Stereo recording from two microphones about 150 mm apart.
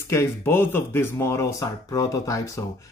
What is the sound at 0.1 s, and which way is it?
Speech, 15° left (ahead or behind).